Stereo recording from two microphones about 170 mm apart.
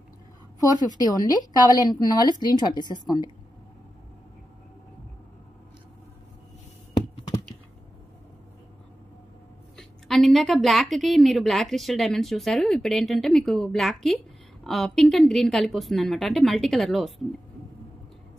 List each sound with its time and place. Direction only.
0.6 s a woman's voice: 25° left (ahead or behind)
9.8 s a woman's voice: centre (ahead or behind)